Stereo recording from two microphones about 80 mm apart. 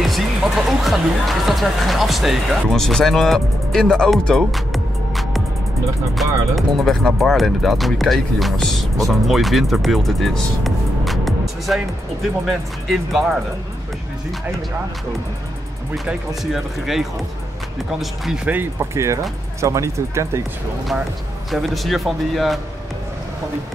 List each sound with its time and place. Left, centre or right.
0.0 s speech: centre
16.5 s speech: centre
18.2 s speech: centre
18.5 s speech: right
19.6 s speech: right
21.5 s speech: centre